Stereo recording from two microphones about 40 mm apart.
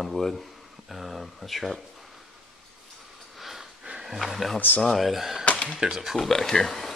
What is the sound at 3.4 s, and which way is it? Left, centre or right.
Wheeze, centre.